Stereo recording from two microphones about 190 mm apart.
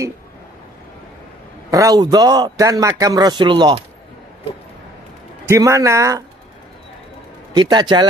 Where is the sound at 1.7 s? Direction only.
20° right (ahead or behind).